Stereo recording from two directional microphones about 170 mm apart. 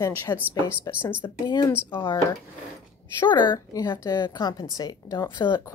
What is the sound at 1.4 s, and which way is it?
Speech, 25° left (ahead or behind).